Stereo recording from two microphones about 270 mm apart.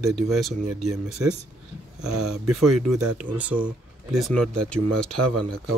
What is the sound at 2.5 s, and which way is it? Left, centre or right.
Speech, centre.